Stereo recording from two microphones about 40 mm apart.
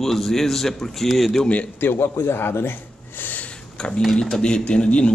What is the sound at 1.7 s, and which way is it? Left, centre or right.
A man's voice, left.